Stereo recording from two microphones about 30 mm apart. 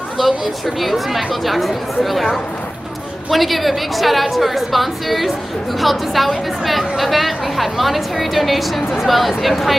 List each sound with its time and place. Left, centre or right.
0.2 s a woman's voice: centre
3.3 s a woman's voice: centre